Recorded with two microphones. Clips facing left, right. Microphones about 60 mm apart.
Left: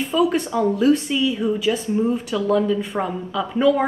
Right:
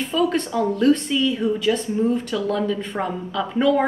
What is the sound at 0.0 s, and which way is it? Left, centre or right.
A woman's voice, centre.